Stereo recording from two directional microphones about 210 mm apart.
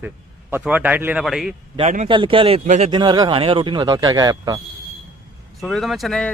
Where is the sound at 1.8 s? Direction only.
35° right (ahead or behind).